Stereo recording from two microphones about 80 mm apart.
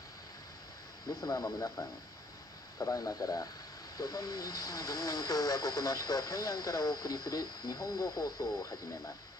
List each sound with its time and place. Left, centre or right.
1.2 s speech: left